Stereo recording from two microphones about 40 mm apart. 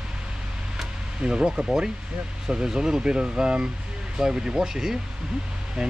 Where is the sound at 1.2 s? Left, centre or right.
Right.